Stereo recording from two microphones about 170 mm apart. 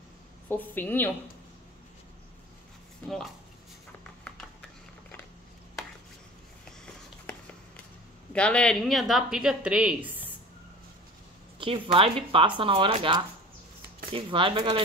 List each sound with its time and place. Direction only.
0.5 s a woman's voice: 10° left (ahead or behind)
4.2 s a sound: 5° left (ahead or behind)
8.3 s speech: 5° left (ahead or behind); by 10.3 s 10° right (ahead or behind)
11.6 s speech: 30° right (ahead or behind)